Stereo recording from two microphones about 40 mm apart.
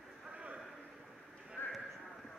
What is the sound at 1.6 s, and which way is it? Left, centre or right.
Horse, left.